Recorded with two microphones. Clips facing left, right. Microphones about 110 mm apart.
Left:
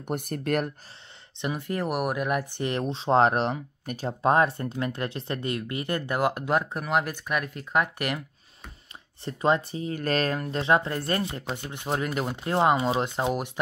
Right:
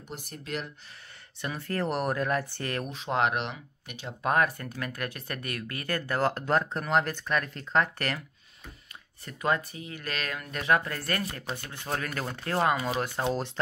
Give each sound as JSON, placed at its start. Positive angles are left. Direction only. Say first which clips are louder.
{"t": 0.0, "sound": "speech", "louder": "left 11 dB", "side_deg": 55}
{"t": 1.4, "sound": "speech", "louder": "left 2 dB", "side_deg": 15}
{"t": 4.2, "sound": "speech", "louder": "left 4 dB", "side_deg": 30}
{"t": 9.2, "sound": "speech", "louder": "left 5 dB", "side_deg": 25}